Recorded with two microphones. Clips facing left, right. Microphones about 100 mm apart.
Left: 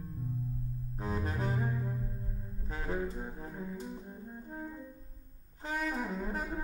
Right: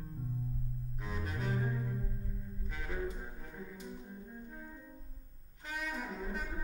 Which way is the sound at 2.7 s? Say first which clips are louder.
Left 4 dB; 35° left (ahead or behind).